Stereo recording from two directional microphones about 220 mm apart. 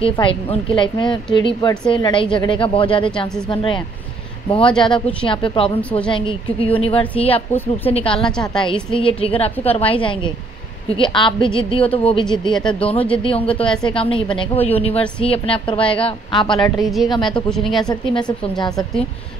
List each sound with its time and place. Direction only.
0.0 s a woman's voice: 25° left (ahead or behind)
5.8 s a woman's voice: 5° left (ahead or behind)
6.0 s a woman's voice: 20° left (ahead or behind)
16.7 s a woman's voice: centre (ahead or behind)
17.1 s a woman's voice: 20° left (ahead or behind)
17.5 s a woman's voice: centre (ahead or behind)